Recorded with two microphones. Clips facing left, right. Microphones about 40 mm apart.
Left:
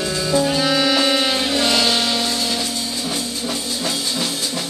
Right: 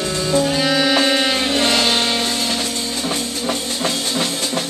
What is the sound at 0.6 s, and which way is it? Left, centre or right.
Music, centre.